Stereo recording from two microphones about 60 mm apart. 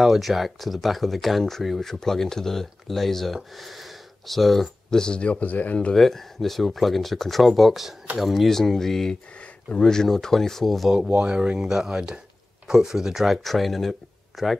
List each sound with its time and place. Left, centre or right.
0.0 s speech: centre
3.5 s a sound: centre
5.0 s speech: centre
5.9 s speech: centre
11.1 s speech: centre